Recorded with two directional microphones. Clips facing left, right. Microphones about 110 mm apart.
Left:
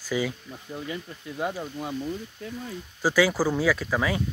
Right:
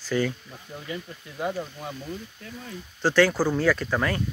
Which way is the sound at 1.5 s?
10° left (ahead or behind).